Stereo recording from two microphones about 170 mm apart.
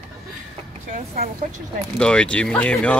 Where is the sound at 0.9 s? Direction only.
55° right (ahead or behind).